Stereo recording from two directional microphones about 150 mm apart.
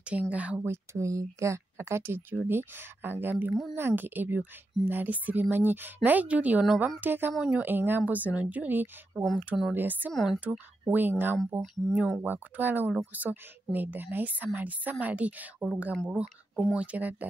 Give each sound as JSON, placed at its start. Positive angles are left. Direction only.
{"t": 0.0, "sound": "speech", "side_deg": -10}
{"t": 7.0, "sound": "speech", "side_deg": -15}
{"t": 10.1, "sound": "speech", "side_deg": 0}